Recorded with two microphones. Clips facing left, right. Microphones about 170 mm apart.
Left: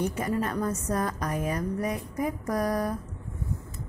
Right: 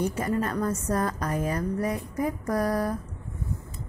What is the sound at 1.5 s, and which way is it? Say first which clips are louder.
A woman's voice: right 2 dB; 15° left (ahead or behind).